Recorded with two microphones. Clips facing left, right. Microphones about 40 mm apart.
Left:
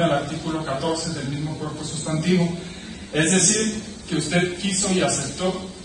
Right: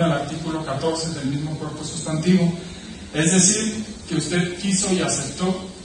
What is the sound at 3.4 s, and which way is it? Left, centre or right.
Speech, centre.